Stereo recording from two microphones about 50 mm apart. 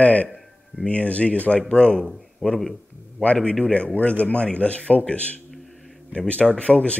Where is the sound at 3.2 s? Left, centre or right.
Left.